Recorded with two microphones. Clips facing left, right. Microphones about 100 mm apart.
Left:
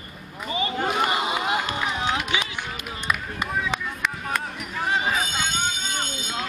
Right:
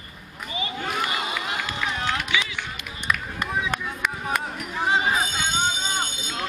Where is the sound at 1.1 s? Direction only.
25° left (ahead or behind).